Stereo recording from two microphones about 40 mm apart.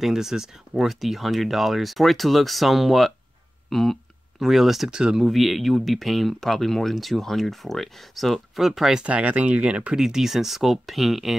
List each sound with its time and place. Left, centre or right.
0.0 s speech: centre
4.4 s speech: centre
9.0 s speech: right
9.9 s speech: centre